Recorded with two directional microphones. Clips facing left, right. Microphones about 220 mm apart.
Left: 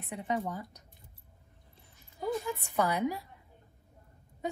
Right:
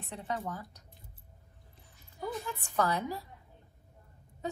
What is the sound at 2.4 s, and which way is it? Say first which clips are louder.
Speech: left 1 dB; 15° left (ahead or behind).